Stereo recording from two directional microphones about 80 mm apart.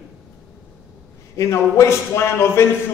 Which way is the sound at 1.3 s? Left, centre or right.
Left.